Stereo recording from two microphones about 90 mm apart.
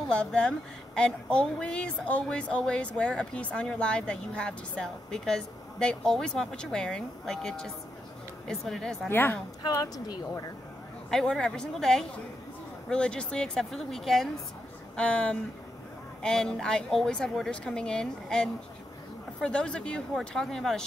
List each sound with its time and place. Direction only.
0.1 s speech: 10° left (ahead or behind)
9.1 s a woman's voice: 25° left (ahead or behind)
9.6 s speech: 45° left (ahead or behind)
11.1 s speech: 5° left (ahead or behind)